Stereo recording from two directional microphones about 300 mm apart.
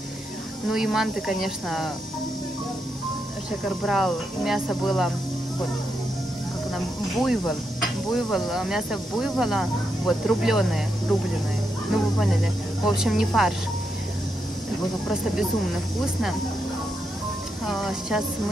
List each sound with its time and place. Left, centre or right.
0.7 s speech: centre
3.6 s speech: centre
7.2 s speech: centre
17.6 s speech: centre